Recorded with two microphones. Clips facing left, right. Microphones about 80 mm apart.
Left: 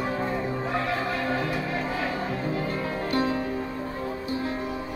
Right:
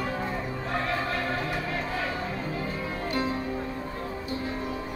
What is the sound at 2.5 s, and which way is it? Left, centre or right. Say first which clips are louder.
Music: left 4 dB; left.